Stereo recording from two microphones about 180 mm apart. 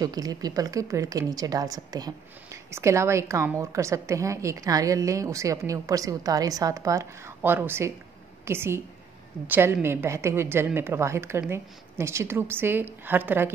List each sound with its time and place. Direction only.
0.0 s a woman's voice: 20° right (ahead or behind)